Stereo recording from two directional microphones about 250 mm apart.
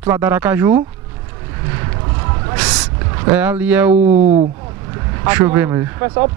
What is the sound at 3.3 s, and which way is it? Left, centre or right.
Speech, centre.